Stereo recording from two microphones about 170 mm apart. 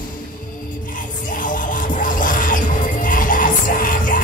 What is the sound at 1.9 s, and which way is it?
Music, 50° left (ahead or behind).